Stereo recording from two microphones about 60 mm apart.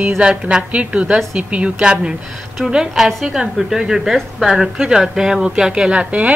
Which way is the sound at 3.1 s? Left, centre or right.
Centre.